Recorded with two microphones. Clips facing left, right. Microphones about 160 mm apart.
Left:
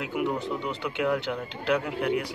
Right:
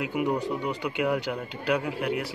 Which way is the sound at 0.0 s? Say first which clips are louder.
Right 2 dB; 15° right (ahead or behind).